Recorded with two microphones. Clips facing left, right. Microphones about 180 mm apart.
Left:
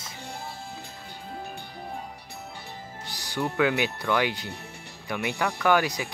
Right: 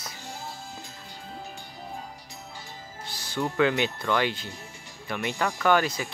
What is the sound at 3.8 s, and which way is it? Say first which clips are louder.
Speech: even; 15° left (ahead or behind).